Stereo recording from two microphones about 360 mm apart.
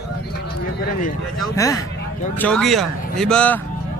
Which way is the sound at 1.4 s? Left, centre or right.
Centre.